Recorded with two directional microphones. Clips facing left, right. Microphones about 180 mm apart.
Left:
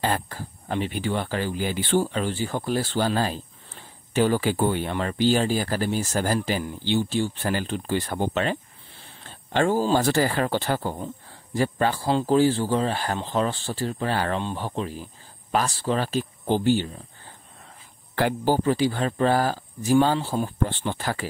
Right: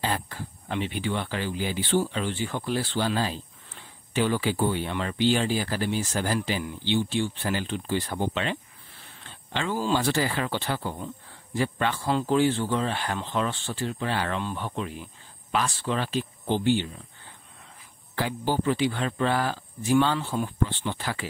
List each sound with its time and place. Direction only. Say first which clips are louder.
0.0 s speech: left 3 dB; 45° left (ahead or behind)
8.9 s a sound: left 2 dB; 30° left (ahead or behind)
9.3 s speech: left 8 dB; 45° left (ahead or behind)
18.1 s speech: left 5 dB; 50° left (ahead or behind)